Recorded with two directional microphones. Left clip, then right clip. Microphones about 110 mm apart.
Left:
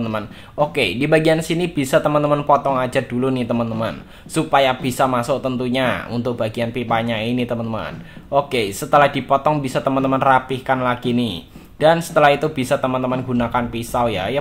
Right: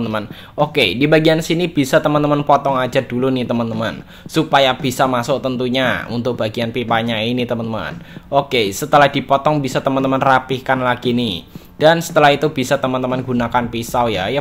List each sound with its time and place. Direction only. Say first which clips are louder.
0.0 s speech: right 3 dB; 25° right (ahead or behind)